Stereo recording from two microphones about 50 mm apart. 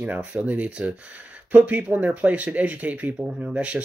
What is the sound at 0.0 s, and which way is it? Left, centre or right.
Speech, right.